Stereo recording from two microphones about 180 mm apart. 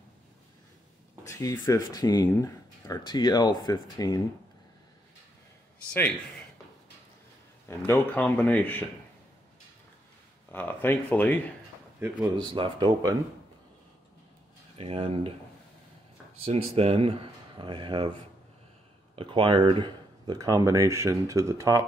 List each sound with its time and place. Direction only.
1.2 s speech: 20° left (ahead or behind)
7.6 s speech: 15° left (ahead or behind)
10.5 s speech: 10° left (ahead or behind)
12.4 s speech: 25° right (ahead or behind)
14.8 s speech: 30° right (ahead or behind)
16.4 s speech: 35° right (ahead or behind)
19.1 s speech: 30° right (ahead or behind)